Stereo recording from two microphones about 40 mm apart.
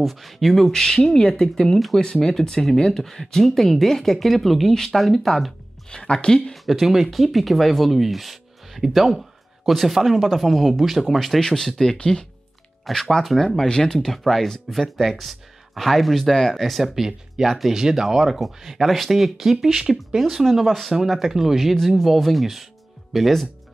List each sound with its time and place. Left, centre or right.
0.0 s speech: centre
5.9 s speech: centre
6.5 s speech: centre
11.1 s speech: centre
13.1 s speech: centre